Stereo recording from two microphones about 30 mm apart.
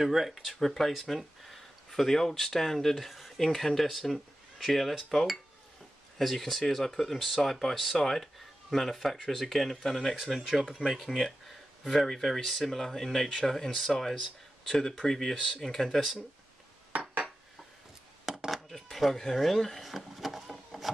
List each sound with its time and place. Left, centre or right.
0.0 s speech: centre
0.3 s speech: centre
3.1 s a sound: centre
3.4 s speech: centre
7.2 s speech: centre
7.4 s speech: centre
10.1 s speech: centre
10.8 s speech: centre
18.3 s coin: centre
18.9 s speech: centre
20.4 s a sound: centre